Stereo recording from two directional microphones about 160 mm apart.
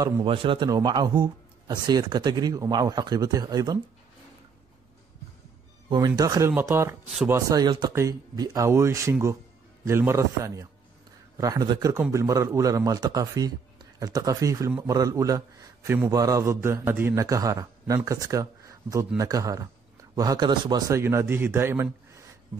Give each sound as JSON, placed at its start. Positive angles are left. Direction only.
{"t": 0.0, "sound": "a man's voice", "side_deg": -30}
{"t": 5.9, "sound": "a man's voice", "side_deg": -25}
{"t": 21.0, "sound": "a man's voice", "side_deg": -15}